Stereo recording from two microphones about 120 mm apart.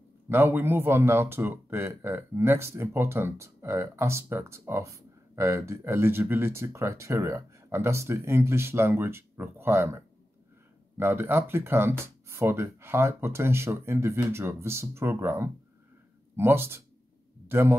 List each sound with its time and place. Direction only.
0.3 s speech: 15° right (ahead or behind)